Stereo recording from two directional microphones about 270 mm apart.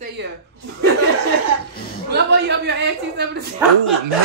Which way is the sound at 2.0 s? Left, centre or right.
Right.